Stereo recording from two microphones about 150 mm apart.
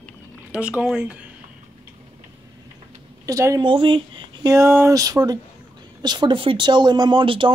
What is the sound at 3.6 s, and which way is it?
Speech, 35° right (ahead or behind).